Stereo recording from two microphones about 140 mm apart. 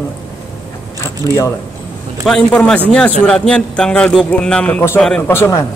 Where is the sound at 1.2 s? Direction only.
20° left (ahead or behind).